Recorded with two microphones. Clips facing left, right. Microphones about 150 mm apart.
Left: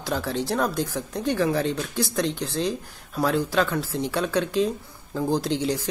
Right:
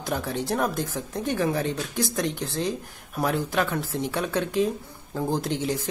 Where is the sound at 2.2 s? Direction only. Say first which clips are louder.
Left 2 dB; 20° left (ahead or behind).